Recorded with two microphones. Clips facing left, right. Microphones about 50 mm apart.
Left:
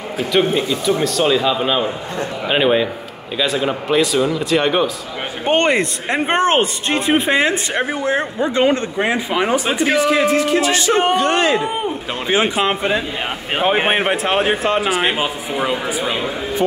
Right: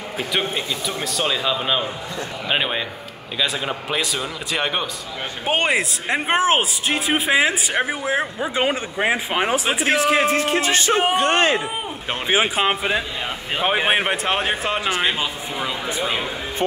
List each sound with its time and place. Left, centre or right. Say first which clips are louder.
0.3 s speech: left 8 dB; centre
10.0 s music: left 3 dB; right
11.5 s a man's voice: left 5 dB; centre; by 15.8 s left
15.9 s speech: left 3 dB; centre